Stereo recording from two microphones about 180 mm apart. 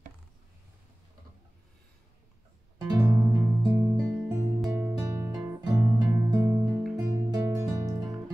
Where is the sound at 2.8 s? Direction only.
15° right (ahead or behind).